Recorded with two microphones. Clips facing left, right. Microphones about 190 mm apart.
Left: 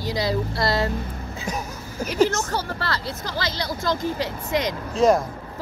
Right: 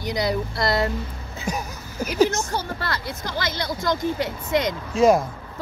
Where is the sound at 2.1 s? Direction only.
15° right (ahead or behind).